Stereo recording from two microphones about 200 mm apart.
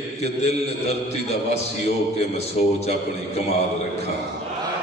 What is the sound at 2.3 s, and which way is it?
A man's voice, 30° left (ahead or behind).